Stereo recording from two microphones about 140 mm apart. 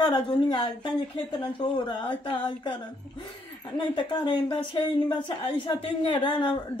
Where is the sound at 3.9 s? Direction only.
35° left (ahead or behind).